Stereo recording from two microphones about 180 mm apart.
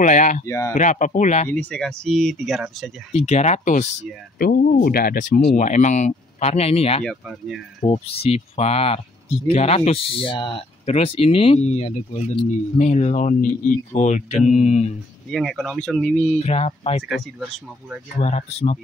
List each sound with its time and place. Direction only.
0.0 s speech: 45° left (ahead or behind)
0.5 s speech: 15° left (ahead or behind)
0.7 s speech: 45° left (ahead or behind)
1.5 s speech: 10° left (ahead or behind)
3.1 s speech: 35° left (ahead or behind)
4.4 s speech: 55° left (ahead or behind)
5.6 s speech: 40° left (ahead or behind)
7.1 s speech: centre (ahead or behind)
7.8 s speech: 35° left (ahead or behind)
15.3 s speech: centre (ahead or behind)
16.3 s speech: 35° left (ahead or behind)
17.1 s speech: 5° right (ahead or behind)
18.2 s speech: 40° left (ahead or behind)